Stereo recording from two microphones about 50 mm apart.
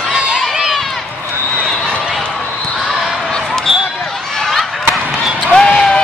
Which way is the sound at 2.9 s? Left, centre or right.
Centre.